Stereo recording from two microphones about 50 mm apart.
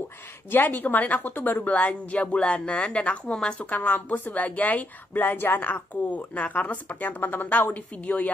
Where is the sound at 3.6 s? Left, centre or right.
Left.